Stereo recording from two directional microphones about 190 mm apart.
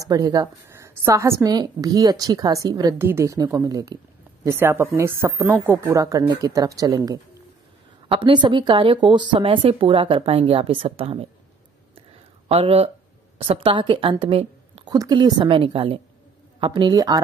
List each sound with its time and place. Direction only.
0.0 s speech: 20° right (ahead or behind)
12.4 s a woman's voice: 30° right (ahead or behind)